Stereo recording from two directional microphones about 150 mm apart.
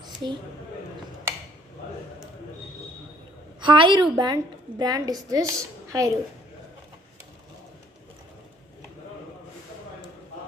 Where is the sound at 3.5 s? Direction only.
30° right (ahead or behind).